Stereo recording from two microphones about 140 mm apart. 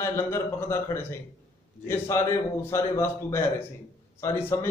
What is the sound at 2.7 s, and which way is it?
A man's voice, 20° left (ahead or behind).